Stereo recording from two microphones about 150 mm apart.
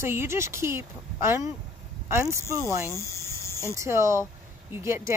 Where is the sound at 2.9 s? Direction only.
20° left (ahead or behind).